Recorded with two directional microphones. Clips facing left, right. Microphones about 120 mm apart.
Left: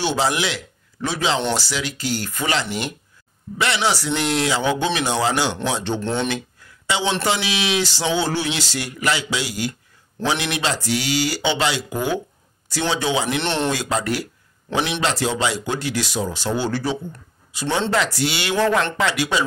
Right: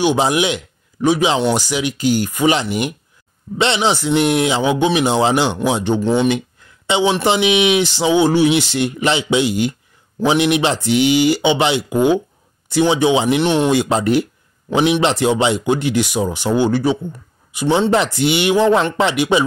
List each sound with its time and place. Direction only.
0.0 s speech: 15° right (ahead or behind)
6.3 s speech: 20° right (ahead or behind)